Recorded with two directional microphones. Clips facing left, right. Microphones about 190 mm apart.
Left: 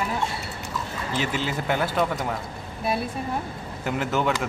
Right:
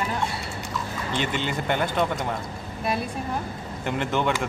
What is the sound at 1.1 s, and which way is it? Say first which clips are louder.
A woman's voice: even; 5° left (ahead or behind).